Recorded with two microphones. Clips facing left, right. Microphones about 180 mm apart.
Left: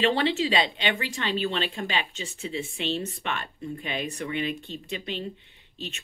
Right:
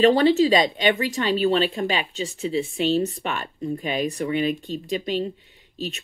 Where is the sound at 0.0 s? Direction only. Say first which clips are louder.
Right 8 dB; 40° right (ahead or behind).